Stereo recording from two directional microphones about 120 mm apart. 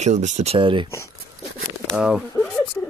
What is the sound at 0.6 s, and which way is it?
Speech, 45° right (ahead or behind).